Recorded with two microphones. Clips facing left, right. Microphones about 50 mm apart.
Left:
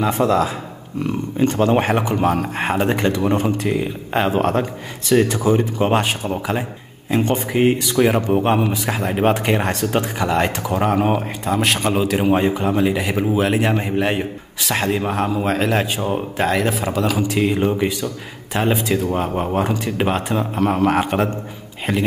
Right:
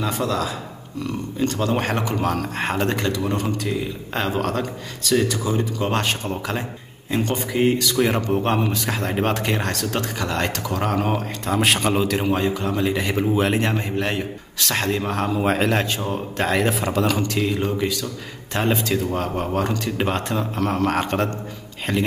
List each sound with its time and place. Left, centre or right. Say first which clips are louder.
0.0 s speech: left 6 dB; left
3.3 s speech: left 5 dB; left
5.9 s speech: left 3 dB; centre
8.0 s speech: left 6 dB; centre
11.5 s speech: left 1 dB; centre
12.3 s speech: left 4 dB; left
12.7 s speech: left 3 dB; centre
16.0 s speech: left 4 dB; left
16.3 s speech: even; centre
17.3 s speech: left 4 dB; left
18.5 s speech: left 3 dB; centre